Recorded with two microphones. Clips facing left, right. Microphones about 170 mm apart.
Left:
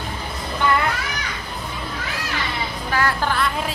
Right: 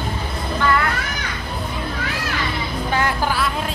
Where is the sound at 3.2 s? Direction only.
5° right (ahead or behind).